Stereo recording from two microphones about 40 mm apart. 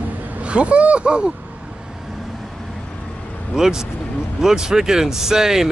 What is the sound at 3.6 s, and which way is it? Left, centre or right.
Speech, centre.